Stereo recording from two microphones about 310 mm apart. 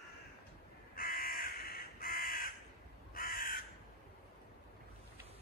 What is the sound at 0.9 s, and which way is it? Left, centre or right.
Crow, left.